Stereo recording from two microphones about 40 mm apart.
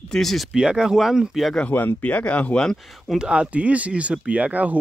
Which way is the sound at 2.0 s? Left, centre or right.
Left.